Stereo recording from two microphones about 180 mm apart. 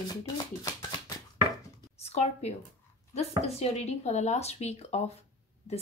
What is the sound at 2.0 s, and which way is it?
Speech, 35° left (ahead or behind).